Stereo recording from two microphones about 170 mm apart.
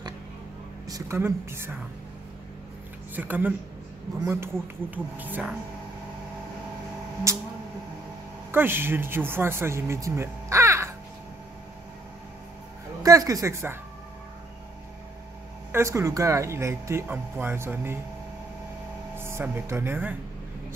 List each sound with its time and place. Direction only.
0.8 s speech: 20° right (ahead or behind)
3.2 s speech: 10° right (ahead or behind)
7.3 s speech: 15° right (ahead or behind)
8.5 s speech: 10° right (ahead or behind)
13.0 s speech: 20° right (ahead or behind)
15.7 s speech: 15° right (ahead or behind)
19.1 s speech: 15° right (ahead or behind)